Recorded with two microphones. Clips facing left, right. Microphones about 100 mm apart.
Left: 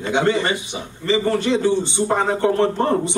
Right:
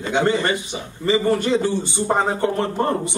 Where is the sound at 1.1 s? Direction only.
15° right (ahead or behind).